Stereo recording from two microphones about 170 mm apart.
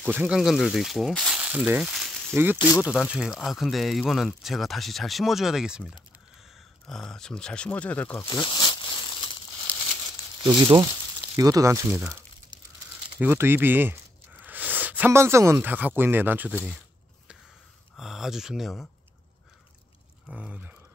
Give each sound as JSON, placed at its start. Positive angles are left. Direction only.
{"t": 0.0, "sound": "speech", "side_deg": -5}
{"t": 2.3, "sound": "speech", "side_deg": -10}
{"t": 8.3, "sound": "crumpling", "side_deg": 25}
{"t": 10.4, "sound": "speech", "side_deg": -25}
{"t": 13.2, "sound": "speech", "side_deg": -15}
{"t": 17.9, "sound": "speech", "side_deg": 0}
{"t": 20.2, "sound": "speech", "side_deg": -5}